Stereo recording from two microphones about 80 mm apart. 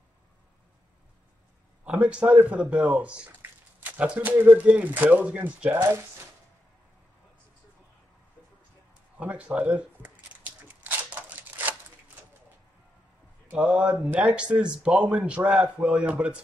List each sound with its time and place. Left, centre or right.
1.9 s speech: centre
3.4 s a sound: right
3.8 s speech: centre
9.2 s speech: centre
10.8 s a sound: right
13.5 s speech: centre